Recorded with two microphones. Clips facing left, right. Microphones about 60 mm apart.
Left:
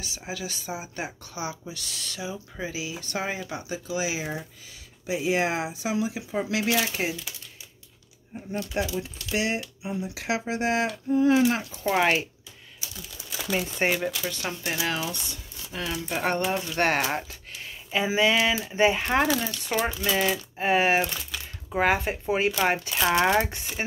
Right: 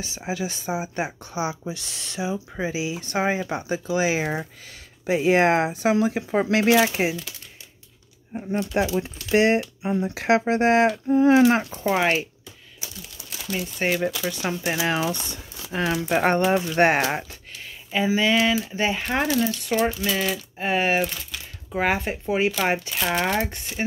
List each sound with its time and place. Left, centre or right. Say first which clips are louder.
0.0 s speech: right 6 dB; right
8.5 s speech: right 6 dB; right
11.8 s speech: right 1 dB; centre
13.5 s speech: left 1 dB; left
14.0 s speech: right 4 dB; centre
15.0 s speech: right 6 dB; right
16.5 s speech: right 6 dB; right
17.9 s speech: right 2 dB; centre